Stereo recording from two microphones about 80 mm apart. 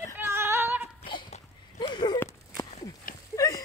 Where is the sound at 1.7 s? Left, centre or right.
Left.